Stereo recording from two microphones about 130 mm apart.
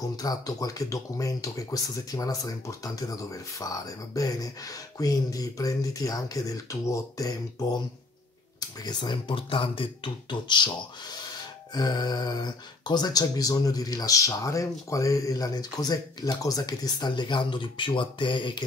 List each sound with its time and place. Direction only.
0.1 s speech: 30° left (ahead or behind)
8.5 s speech: 35° left (ahead or behind)